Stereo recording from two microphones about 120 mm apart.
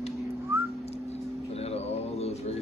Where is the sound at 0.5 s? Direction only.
20° right (ahead or behind).